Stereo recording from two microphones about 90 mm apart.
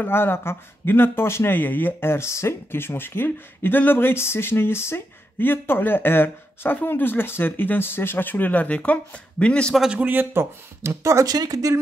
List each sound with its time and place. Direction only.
0.0 s speech: 25° left (ahead or behind)
9.8 s a man's voice: 10° right (ahead or behind)
10.0 s speech: 25° right (ahead or behind)
11.3 s speech: 45° right (ahead or behind)